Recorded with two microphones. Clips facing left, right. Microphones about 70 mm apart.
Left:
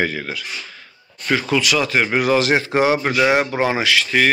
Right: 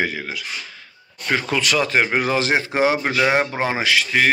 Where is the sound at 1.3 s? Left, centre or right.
Right; by 3.1 s centre.